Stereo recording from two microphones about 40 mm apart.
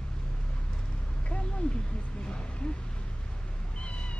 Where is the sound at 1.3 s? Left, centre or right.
Left.